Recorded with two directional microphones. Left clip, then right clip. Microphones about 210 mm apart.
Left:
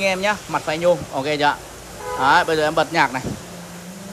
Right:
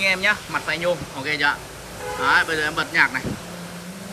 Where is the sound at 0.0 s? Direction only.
15° left (ahead or behind).